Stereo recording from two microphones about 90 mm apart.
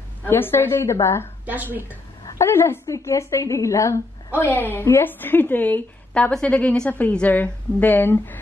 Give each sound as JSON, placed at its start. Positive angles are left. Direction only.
{"t": 0.2, "sound": "a woman's voice", "side_deg": 25}
{"t": 1.4, "sound": "a woman's voice", "side_deg": -20}
{"t": 2.2, "sound": "a woman's voice", "side_deg": 30}
{"t": 4.4, "sound": "a woman's voice", "side_deg": 20}